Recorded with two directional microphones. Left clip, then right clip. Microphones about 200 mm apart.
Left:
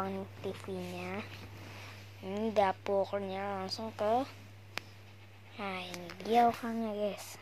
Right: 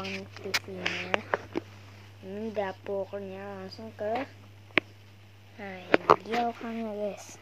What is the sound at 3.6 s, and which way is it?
Speech, 25° left (ahead or behind).